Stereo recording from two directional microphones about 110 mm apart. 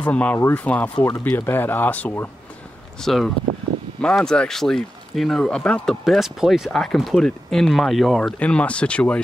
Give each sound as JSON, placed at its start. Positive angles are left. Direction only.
{"t": 0.0, "sound": "speech", "side_deg": 10}
{"t": 3.0, "sound": "speech", "side_deg": 0}